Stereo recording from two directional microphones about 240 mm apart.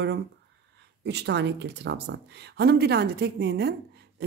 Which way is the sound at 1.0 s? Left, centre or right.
Right.